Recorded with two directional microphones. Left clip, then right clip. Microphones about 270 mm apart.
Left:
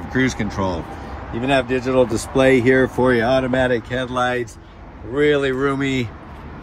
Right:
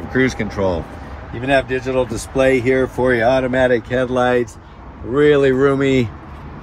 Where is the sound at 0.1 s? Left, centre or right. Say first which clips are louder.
Right 3 dB; centre.